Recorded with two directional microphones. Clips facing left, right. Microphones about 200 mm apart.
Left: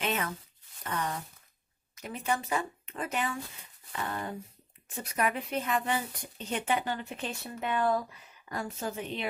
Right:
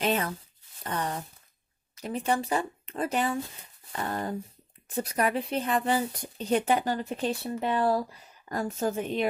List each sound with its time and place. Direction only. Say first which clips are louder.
0.0 s a woman's voice: right 5 dB; 35° right (ahead or behind)